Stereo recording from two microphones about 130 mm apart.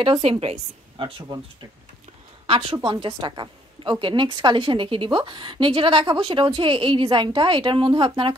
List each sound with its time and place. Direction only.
0.0 s a woman's voice: 45° right (ahead or behind)
2.4 s a woman's voice: 45° right (ahead or behind)